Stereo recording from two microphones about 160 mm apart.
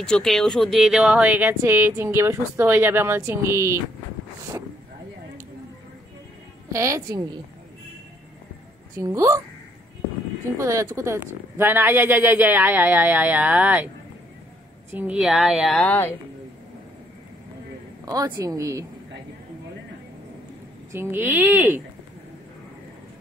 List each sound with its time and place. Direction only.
0.0 s speech: 5° left (ahead or behind); by 3.8 s 15° right (ahead or behind)
6.7 s speech: 20° right (ahead or behind)
8.9 s speech: 20° right (ahead or behind)
10.6 s speech: 20° right (ahead or behind)
14.9 s speech: 10° right (ahead or behind)
15.8 s speech: 10° left (ahead or behind)
18.0 s speech: 20° right (ahead or behind)
20.9 s speech: 15° right (ahead or behind)